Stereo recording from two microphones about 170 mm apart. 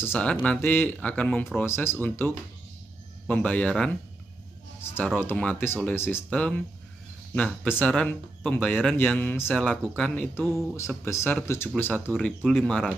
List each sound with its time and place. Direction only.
0.0 s speech: 10° left (ahead or behind)
4.9 s speech: 10° left (ahead or behind)